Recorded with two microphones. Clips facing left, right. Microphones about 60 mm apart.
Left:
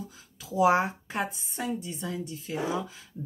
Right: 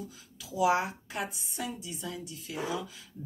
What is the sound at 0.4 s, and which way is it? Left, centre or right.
Speech, left.